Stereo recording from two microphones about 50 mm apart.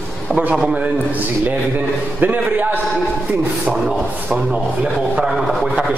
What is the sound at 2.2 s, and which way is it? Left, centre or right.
Speech, right.